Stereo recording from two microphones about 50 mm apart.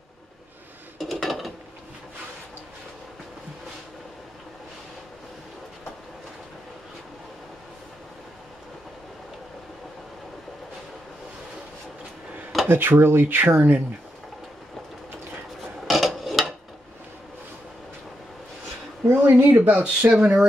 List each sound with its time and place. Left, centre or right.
0.9 s dishes: centre
12.6 s speech: right
15.9 s filing: centre
19.0 s speech: right